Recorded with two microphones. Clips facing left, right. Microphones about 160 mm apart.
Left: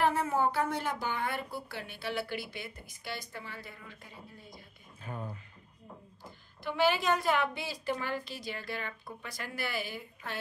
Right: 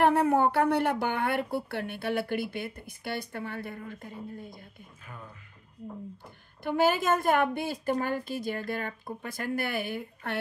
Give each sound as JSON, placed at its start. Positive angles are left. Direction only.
{"t": 0.0, "sound": "a woman's voice", "side_deg": -60}
{"t": 5.0, "sound": "speech", "side_deg": 35}
{"t": 6.6, "sound": "a woman's voice", "side_deg": -50}